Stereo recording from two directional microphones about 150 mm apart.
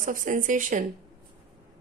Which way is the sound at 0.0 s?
65° right (ahead or behind).